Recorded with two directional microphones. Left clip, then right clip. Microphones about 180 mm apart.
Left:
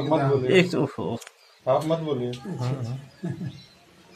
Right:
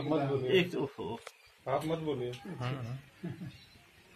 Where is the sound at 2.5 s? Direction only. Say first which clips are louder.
Left 9 dB; 15° right (ahead or behind).